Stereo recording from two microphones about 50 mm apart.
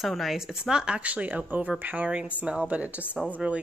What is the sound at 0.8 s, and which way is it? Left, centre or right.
Speech, right.